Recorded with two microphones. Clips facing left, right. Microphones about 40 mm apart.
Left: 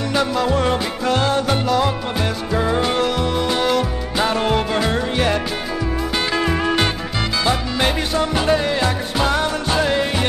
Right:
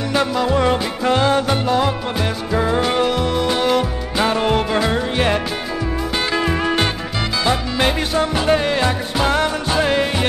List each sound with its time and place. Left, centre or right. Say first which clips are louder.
0.1 s music: right 1 dB; right
0.5 s music: right 2 dB; centre
1.0 s music: right 3 dB; right
2.5 s music: right 1 dB; centre
3.7 s music: right 1 dB; centre
6.4 s music: even; centre